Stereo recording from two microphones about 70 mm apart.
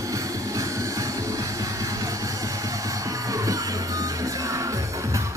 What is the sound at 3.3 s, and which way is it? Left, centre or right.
Music, right.